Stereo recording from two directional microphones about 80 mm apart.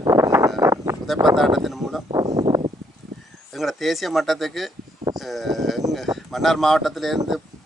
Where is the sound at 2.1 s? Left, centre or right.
Right.